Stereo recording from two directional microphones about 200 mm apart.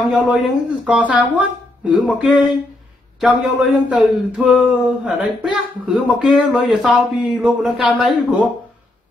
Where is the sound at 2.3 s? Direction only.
25° left (ahead or behind).